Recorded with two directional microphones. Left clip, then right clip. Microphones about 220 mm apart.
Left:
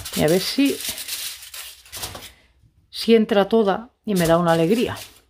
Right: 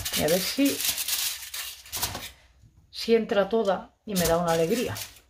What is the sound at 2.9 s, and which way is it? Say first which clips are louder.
Speech: left 6 dB; 50° left (ahead or behind).